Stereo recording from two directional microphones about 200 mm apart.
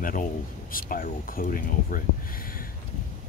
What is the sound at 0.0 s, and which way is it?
Speech, 40° left (ahead or behind).